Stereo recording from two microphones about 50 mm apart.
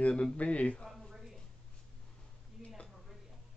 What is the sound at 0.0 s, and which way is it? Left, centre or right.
Speech, left.